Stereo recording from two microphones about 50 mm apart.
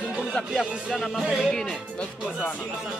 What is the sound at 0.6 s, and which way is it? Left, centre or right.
Speech, centre.